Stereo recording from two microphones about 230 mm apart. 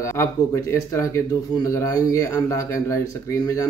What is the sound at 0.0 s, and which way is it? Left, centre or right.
Speech, centre.